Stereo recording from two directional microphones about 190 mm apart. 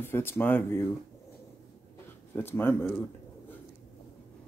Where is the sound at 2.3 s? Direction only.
10° left (ahead or behind).